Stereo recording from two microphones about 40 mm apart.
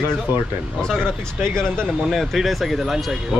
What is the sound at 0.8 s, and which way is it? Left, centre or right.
Speech, centre.